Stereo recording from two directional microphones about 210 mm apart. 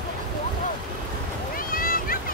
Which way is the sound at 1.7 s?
45° left (ahead or behind).